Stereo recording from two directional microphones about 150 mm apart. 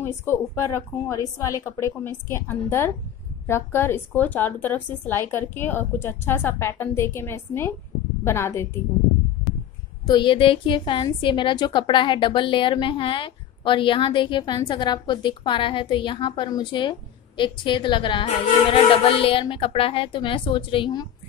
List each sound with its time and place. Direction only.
0.0 s a woman's voice: 15° left (ahead or behind)
10.0 s a woman's voice: 30° left (ahead or behind)